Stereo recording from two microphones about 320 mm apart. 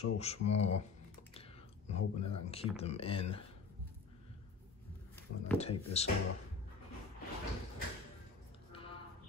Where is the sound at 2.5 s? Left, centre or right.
Centre.